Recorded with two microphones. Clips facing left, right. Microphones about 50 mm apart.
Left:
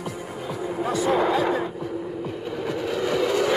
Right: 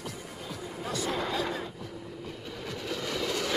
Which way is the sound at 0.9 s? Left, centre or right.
Centre.